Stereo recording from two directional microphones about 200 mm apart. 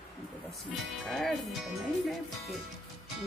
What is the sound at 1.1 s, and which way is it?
Speech, centre (ahead or behind).